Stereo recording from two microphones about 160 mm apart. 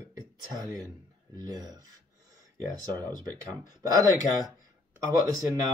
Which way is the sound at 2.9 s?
25° right (ahead or behind).